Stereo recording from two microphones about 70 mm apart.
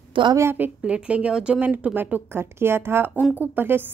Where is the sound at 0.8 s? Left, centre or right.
Centre.